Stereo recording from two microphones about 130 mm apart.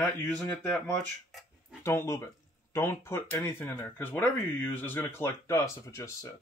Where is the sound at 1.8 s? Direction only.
20° left (ahead or behind).